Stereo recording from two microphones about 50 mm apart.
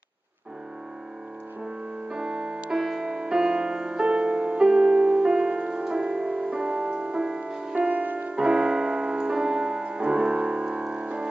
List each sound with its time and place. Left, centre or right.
2.0 s music: centre
7.7 s music: right
8.4 s music: centre